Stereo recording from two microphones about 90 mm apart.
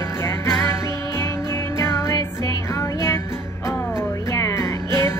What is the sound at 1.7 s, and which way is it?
Music, 30° left (ahead or behind).